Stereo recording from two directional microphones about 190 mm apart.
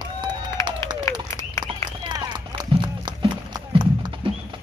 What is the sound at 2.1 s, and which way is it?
Run, 25° right (ahead or behind).